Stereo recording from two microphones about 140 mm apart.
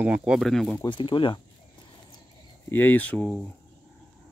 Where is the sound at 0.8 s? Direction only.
35° left (ahead or behind).